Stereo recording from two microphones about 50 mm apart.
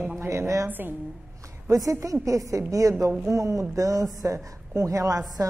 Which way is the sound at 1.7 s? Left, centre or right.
Right.